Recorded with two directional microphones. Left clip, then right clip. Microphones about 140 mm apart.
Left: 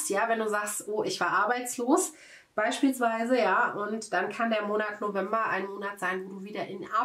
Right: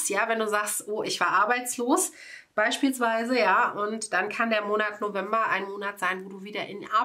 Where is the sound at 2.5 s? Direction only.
40° right (ahead or behind).